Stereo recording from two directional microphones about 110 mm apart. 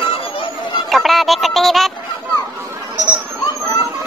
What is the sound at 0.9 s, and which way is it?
Music, centre (ahead or behind).